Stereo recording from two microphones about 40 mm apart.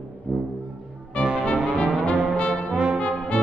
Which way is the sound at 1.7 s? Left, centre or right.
Left.